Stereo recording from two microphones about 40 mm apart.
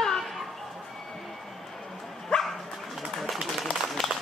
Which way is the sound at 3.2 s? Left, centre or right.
Centre.